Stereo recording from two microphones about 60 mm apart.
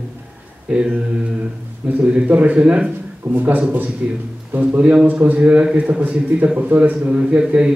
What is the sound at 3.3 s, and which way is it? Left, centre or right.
Speech, right.